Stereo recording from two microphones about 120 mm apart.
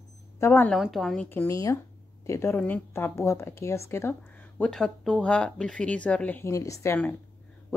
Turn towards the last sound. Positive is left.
turn(degrees=15)  # may be behind; listen again after turning